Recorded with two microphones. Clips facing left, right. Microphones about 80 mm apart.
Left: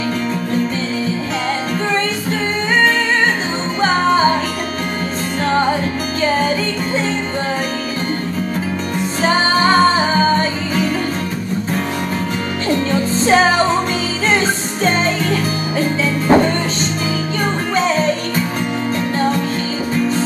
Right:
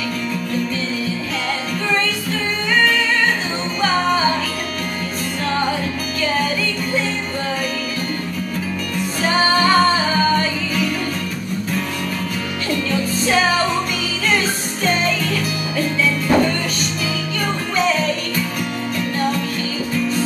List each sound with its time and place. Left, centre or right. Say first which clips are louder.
3.8 s music: left 4 dB; left
5.5 s music: left 5 dB; left
9.2 s music: left 2 dB; left
12.6 s music: left 4 dB; left
17.7 s music: left 2 dB; left